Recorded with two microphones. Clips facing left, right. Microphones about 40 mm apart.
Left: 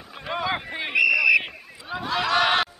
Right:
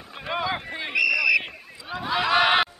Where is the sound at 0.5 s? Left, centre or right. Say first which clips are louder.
Left 2 dB; centre.